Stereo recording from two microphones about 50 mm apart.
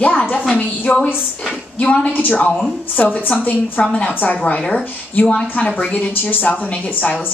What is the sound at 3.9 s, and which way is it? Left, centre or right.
A woman's voice, centre.